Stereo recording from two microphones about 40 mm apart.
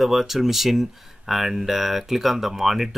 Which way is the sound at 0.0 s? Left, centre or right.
Centre.